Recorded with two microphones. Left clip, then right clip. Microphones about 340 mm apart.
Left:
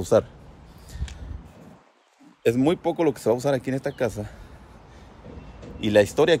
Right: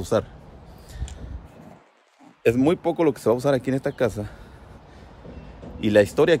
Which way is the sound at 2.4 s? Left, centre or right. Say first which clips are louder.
Right 2 dB; centre.